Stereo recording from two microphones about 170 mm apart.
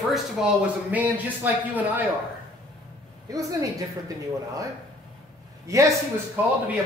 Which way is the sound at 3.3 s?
20° right (ahead or behind).